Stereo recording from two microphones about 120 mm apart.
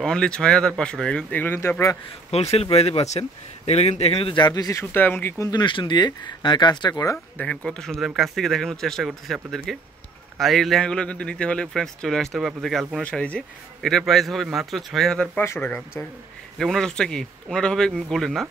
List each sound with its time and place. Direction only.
0.0 s speech: 5° left (ahead or behind); by 2.0 s 25° left (ahead or behind)
2.3 s speech: 60° left (ahead or behind); by 4.8 s 30° left (ahead or behind)
4.9 s speech: 20° left (ahead or behind)
5.5 s speech: 40° left (ahead or behind)
7.3 s a man's voice: 5° left (ahead or behind)
15.3 s speech: 15° left (ahead or behind)
16.5 s a man's voice: 5° left (ahead or behind)